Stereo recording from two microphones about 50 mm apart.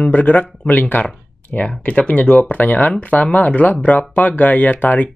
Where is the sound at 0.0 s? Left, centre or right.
Left.